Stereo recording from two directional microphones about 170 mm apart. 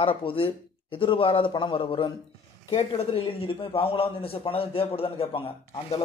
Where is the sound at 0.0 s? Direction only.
30° left (ahead or behind).